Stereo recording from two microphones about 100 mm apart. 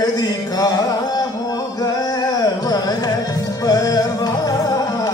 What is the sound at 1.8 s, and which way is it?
Carnatic music, 40° left (ahead or behind).